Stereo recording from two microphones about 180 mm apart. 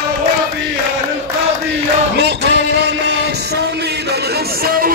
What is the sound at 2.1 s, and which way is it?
Music, 70° right (ahead or behind).